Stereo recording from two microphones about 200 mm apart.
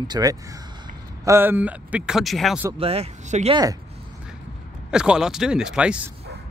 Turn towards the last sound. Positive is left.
turn(degrees=-5)  # may be behind; listen again after turning